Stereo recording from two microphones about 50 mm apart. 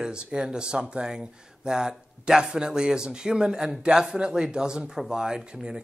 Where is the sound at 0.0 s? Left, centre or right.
Centre.